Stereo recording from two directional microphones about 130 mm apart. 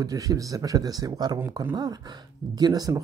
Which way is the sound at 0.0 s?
30° right (ahead or behind).